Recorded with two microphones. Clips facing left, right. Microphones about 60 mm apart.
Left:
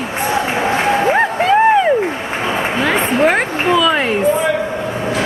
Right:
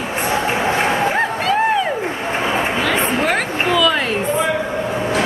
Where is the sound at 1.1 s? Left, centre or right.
Left.